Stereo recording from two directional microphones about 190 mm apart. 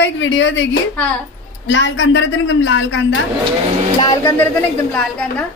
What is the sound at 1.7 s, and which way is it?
A woman's voice, 70° left (ahead or behind).